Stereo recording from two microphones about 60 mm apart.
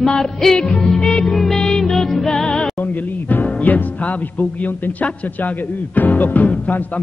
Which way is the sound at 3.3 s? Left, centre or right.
Left.